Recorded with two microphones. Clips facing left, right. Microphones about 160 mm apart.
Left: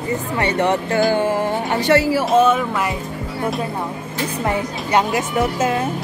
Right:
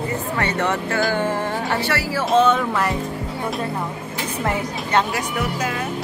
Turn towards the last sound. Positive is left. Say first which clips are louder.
# left 6 dB
turn(degrees=25)  # may be behind; listen again after turning